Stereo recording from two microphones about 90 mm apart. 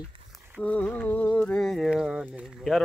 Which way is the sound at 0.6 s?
15° left (ahead or behind).